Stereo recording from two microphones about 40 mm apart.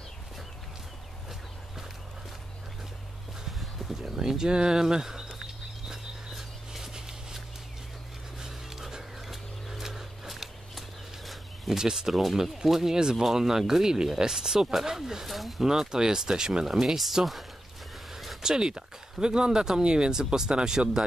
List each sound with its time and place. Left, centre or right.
4.2 s speech: centre
5.9 s a sound: centre
8.4 s a sound: centre
11.8 s speech: centre
12.1 s speech: centre
15.2 s speech: centre
15.6 s speech: centre
16.8 s speech: centre
18.1 s a sound: centre
18.4 s speech: centre